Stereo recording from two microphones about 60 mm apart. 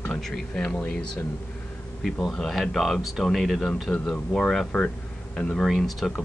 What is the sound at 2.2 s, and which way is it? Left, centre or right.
Speech, centre.